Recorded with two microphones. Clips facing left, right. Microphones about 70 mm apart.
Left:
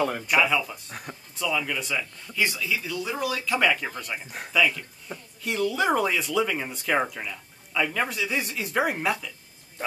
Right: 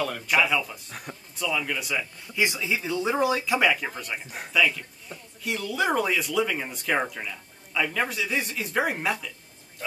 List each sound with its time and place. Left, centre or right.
0.3 s speech: centre
2.3 s speech: centre
3.5 s speech: centre
9.8 s speech: left